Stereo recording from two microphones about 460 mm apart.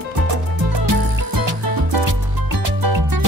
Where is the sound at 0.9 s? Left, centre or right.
Right.